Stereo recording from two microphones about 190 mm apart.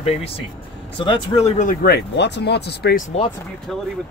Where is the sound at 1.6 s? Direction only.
50° left (ahead or behind).